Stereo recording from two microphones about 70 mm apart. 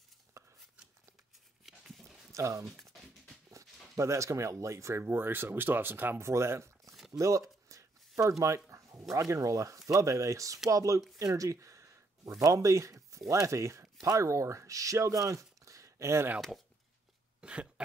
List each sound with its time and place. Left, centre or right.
0.3 s a sound: right
1.7 s a sound: centre
2.3 s speech: right
2.8 s music: centre
3.4 s speech: right
6.2 s speech: right
7.1 s a sound: right
8.2 s dog: right
9.1 s speech: right
11.1 s a sound: right
12.4 s speech: right
16.3 s speech: centre
17.4 s throat clearing: centre